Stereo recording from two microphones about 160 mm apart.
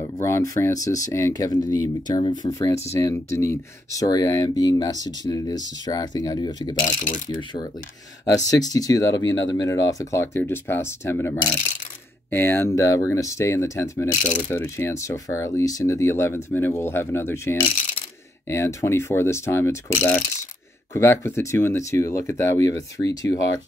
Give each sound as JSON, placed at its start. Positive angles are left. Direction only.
{"t": 0.2, "sound": "speech", "side_deg": 15}
{"t": 6.8, "sound": "speech", "side_deg": 55}
{"t": 7.2, "sound": "speech", "side_deg": 25}